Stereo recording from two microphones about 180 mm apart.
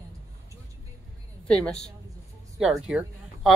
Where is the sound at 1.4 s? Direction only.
5° left (ahead or behind).